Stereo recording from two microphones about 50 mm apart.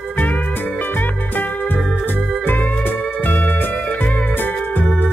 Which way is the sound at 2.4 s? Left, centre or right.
Left.